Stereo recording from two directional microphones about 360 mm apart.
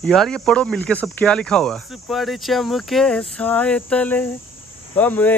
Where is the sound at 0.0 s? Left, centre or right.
Centre.